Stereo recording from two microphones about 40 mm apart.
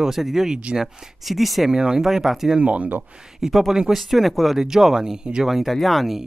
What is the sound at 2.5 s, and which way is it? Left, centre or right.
Speech, right.